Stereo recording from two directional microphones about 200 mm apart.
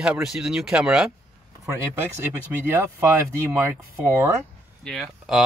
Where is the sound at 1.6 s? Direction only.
15° right (ahead or behind).